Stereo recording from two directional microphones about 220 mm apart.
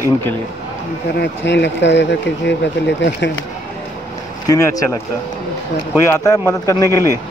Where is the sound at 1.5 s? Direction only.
55° left (ahead or behind).